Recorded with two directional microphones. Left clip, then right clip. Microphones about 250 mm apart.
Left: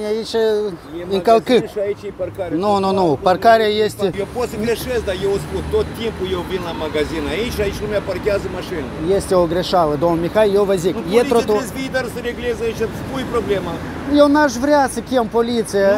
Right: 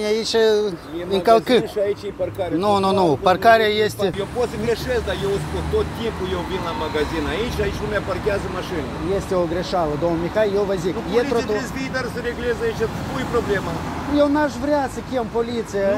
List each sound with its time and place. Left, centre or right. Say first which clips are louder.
0.0 s speech: even; centre
1.1 s speech: left 2 dB; centre
2.6 s speech: left 2 dB; centre
4.4 s speech: left 1 dB; left
7.0 s speech: left 4 dB; left
9.3 s speech: left 6 dB; left
14.1 s speech: left 6 dB; left